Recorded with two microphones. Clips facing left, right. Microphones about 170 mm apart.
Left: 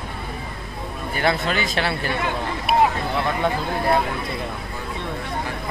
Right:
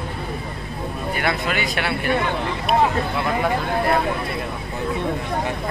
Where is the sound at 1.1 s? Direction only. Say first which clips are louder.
Left 3 dB; 30° left (ahead or behind).